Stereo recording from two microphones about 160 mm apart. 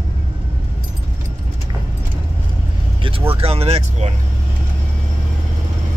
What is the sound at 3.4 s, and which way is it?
Speech, 40° right (ahead or behind).